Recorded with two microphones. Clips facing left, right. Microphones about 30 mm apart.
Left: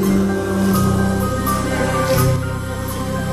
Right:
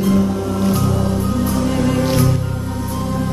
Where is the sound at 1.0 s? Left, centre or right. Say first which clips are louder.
Even; left.